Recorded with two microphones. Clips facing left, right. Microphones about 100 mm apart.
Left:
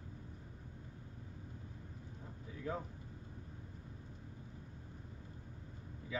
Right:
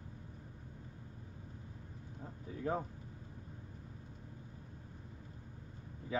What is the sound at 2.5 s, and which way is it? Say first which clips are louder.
Vehicle: right 5 dB; 40° right (ahead or behind).